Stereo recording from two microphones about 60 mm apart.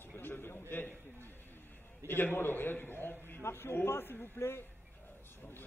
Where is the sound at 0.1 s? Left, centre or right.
Left.